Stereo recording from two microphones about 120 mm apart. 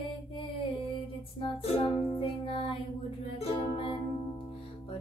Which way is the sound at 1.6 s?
55° left (ahead or behind).